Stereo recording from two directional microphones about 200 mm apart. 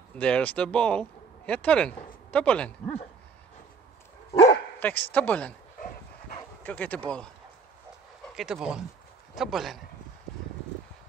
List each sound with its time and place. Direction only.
0.2 s speech: 5° left (ahead or behind)
4.3 s dog: 35° left (ahead or behind)
4.7 s speech: 10° left (ahead or behind)
6.6 s speech: 5° left (ahead or behind)
8.4 s speech: centre (ahead or behind)